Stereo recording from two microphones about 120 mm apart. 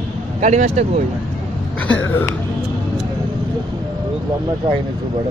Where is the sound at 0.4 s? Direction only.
80° right.